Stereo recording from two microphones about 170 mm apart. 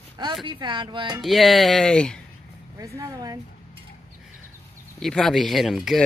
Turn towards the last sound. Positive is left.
turn(degrees=0)  # may be behind; listen again after turning